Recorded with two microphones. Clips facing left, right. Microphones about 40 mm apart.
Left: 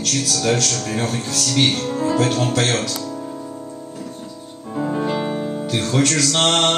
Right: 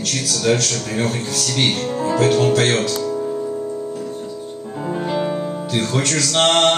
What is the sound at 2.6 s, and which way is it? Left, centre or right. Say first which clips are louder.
Speech: right 3 dB; right.